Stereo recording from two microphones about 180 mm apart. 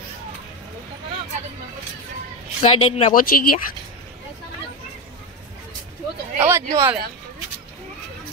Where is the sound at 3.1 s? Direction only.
50° left (ahead or behind).